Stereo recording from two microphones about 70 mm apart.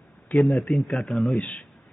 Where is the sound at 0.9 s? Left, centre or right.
Centre.